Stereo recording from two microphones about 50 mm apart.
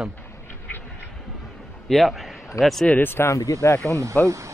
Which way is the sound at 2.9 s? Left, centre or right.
Left.